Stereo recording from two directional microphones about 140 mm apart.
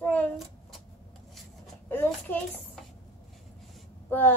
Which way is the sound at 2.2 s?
10° left (ahead or behind).